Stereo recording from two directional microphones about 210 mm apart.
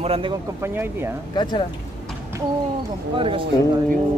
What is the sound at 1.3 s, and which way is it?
Speech, 20° left (ahead or behind).